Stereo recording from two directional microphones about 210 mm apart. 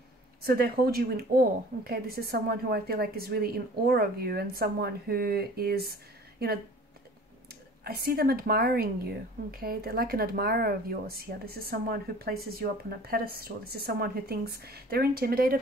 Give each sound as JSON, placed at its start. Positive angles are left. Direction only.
{"t": 0.4, "sound": "a woman's voice", "side_deg": -45}
{"t": 7.8, "sound": "a woman's voice", "side_deg": -45}